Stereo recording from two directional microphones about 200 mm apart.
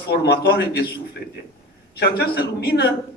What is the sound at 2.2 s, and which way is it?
Speech, 55° left (ahead or behind).